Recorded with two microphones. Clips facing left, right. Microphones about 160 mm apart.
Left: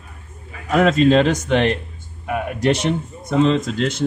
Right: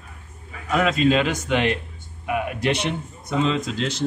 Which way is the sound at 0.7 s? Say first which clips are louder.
Left 5 dB; 45° left (ahead or behind).